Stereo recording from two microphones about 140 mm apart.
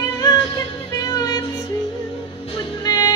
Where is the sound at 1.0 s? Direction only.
25° left (ahead or behind).